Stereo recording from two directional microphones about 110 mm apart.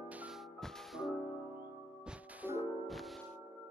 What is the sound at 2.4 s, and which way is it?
Music, 20° right (ahead or behind).